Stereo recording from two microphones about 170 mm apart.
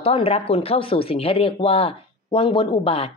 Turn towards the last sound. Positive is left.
turn(degrees=35)  # may be behind; listen again after turning